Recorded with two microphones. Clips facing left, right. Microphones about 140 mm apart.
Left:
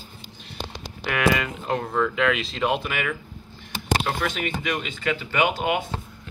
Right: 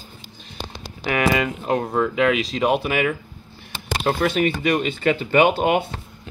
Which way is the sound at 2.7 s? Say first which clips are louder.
Right 6 dB; 40° right (ahead or behind).